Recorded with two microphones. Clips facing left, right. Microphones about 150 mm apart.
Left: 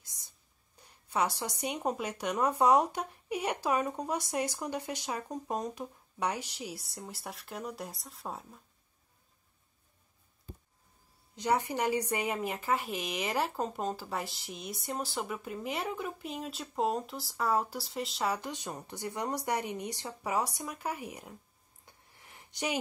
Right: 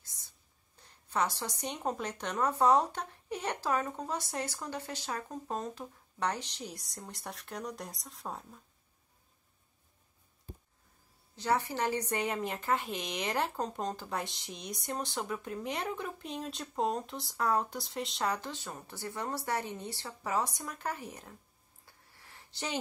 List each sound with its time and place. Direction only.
0.7 s a woman's voice: 10° left (ahead or behind)
11.3 s a woman's voice: 15° left (ahead or behind)
21.8 s a sound: 20° left (ahead or behind)